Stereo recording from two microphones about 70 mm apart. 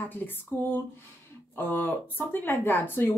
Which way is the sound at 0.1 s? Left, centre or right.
Left.